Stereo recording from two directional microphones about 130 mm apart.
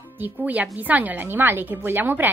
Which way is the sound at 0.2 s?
10° right (ahead or behind).